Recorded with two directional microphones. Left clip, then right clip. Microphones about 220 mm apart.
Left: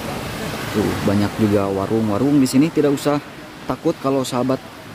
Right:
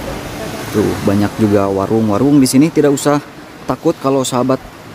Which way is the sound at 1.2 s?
25° right (ahead or behind).